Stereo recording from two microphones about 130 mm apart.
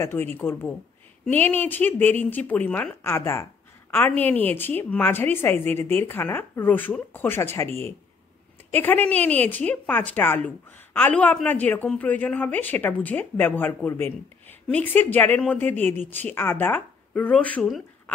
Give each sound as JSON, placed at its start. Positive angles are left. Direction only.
{"t": 0.0, "sound": "a woman's voice", "side_deg": 20}